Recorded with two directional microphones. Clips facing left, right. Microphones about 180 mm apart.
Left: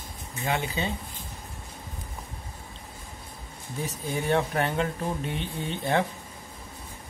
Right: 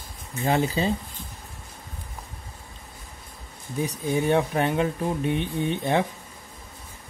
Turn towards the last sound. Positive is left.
turn(degrees=-15)  # may be behind; listen again after turning